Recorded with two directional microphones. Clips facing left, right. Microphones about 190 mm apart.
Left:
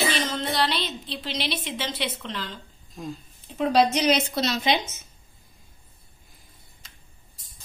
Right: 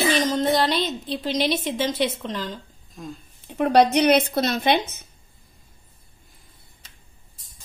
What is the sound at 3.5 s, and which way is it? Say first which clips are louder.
A woman's voice: right 4 dB; 60° right (ahead or behind).